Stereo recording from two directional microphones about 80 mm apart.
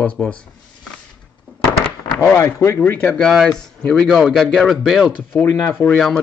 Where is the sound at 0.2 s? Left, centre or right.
Centre.